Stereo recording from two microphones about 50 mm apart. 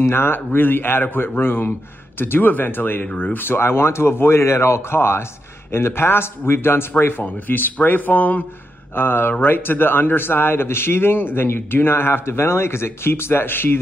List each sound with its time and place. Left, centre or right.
0.0 s a man's voice: left
7.2 s speech: left
8.9 s a man's voice: left